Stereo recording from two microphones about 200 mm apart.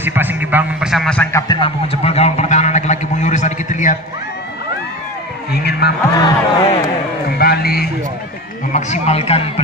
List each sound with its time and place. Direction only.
0.0 s speech: 10° right (ahead or behind); by 1.4 s 5° left (ahead or behind)
1.5 s a sound: 25° left (ahead or behind)
5.7 s speech: 55° left (ahead or behind)
6.1 s speech: 20° left (ahead or behind)
7.2 s speech: 50° left (ahead or behind)
8.7 s speech: 35° left (ahead or behind)